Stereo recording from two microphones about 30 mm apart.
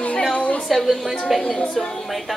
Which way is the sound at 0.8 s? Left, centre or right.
Centre.